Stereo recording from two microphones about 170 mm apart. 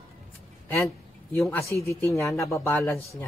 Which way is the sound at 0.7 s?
15° left (ahead or behind).